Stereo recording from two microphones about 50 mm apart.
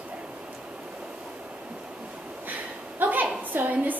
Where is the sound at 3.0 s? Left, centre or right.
Right.